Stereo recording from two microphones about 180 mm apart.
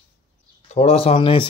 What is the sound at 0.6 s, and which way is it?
Speech, 35° left (ahead or behind).